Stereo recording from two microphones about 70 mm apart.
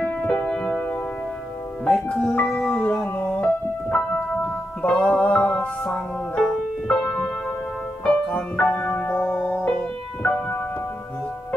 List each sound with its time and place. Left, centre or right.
0.4 s music: centre
1.9 s speech: centre
2.7 s music: centre